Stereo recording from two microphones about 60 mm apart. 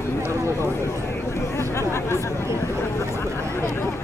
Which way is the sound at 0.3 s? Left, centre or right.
Right.